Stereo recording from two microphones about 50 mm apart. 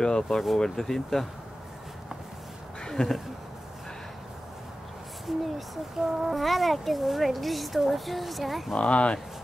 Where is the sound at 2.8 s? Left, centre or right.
Centre.